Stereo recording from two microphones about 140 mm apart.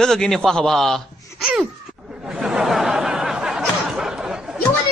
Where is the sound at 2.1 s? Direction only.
5° right (ahead or behind).